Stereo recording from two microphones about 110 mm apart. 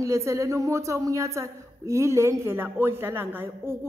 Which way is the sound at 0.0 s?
25° right (ahead or behind).